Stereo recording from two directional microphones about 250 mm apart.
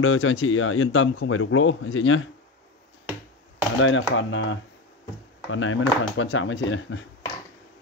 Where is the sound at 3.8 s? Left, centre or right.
Left.